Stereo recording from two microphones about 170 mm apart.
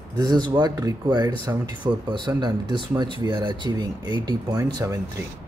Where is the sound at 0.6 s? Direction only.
25° right (ahead or behind).